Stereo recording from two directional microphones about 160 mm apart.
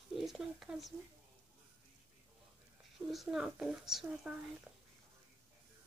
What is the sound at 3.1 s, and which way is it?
Speech, centre (ahead or behind).